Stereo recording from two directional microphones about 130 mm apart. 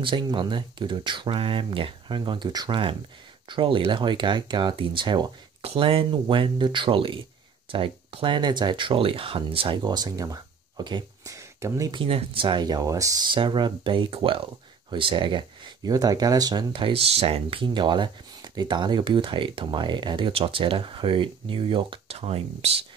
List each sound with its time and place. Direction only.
0.0 s speech: 35° right (ahead or behind)
11.3 s a sound: 25° right (ahead or behind)
11.9 s speech: 45° right (ahead or behind)